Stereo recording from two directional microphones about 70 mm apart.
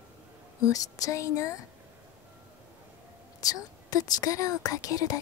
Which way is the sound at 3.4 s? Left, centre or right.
Left.